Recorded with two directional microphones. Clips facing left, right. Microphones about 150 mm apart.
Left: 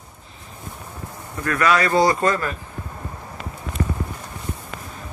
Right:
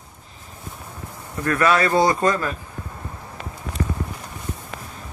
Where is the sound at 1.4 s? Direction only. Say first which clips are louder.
Right 1 dB; 25° right (ahead or behind).